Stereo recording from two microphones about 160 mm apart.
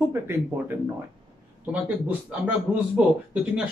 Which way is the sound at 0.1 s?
15° right (ahead or behind).